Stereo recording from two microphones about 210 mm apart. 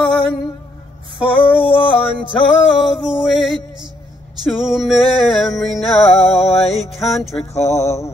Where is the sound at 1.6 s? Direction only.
25° left (ahead or behind).